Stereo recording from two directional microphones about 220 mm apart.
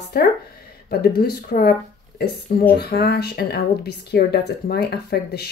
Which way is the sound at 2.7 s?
45° left (ahead or behind).